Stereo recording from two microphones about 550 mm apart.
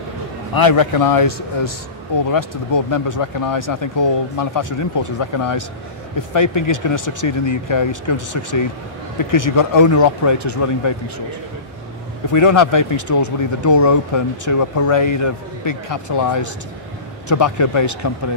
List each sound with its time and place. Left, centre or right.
0.6 s speech: left
12.3 s speech: left